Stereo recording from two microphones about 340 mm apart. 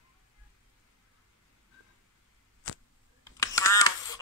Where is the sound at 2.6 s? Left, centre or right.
Left.